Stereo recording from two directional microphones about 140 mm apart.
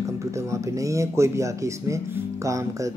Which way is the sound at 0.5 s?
20° right (ahead or behind).